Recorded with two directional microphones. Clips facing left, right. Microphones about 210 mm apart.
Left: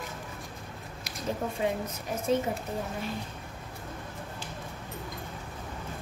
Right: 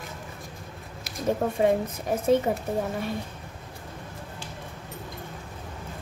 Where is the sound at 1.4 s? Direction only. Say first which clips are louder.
Right 6 dB; 55° right (ahead or behind).